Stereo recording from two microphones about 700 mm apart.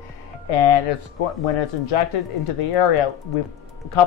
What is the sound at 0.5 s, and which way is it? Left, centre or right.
Speech, left.